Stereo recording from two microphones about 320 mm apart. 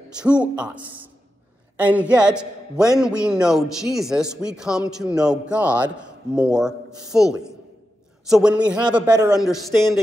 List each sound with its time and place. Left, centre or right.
0.2 s a man's voice: centre